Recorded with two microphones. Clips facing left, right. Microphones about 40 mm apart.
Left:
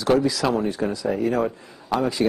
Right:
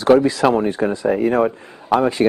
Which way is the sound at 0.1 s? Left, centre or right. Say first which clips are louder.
Right 6 dB; right.